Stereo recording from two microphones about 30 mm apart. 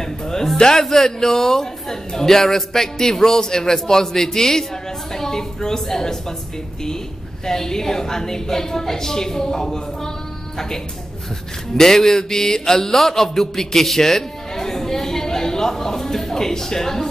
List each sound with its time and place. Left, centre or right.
0.0 s a sound: centre
0.7 s a man's voice: centre
7.4 s a man's voice: centre
11.7 s mantra: centre